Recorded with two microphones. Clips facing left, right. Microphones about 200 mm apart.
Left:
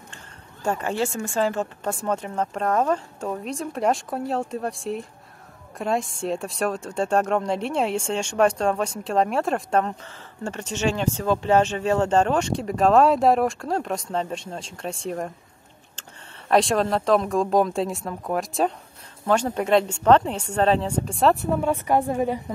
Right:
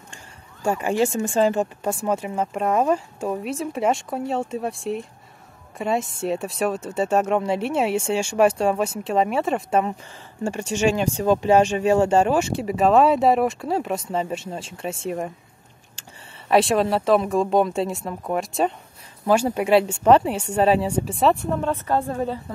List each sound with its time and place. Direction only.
0.1 s speech: 10° right (ahead or behind)
21.5 s a woman's voice: 10° left (ahead or behind)